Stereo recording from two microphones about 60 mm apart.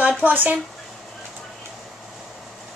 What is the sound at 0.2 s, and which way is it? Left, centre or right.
Speech, right.